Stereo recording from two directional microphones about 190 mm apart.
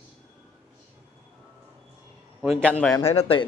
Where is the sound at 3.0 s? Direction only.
30° left (ahead or behind).